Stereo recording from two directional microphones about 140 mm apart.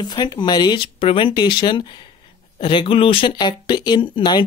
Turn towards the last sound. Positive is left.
turn(degrees=35)  # may be behind; listen again after turning